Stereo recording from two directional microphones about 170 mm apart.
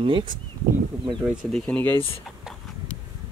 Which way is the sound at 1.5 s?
5° left (ahead or behind).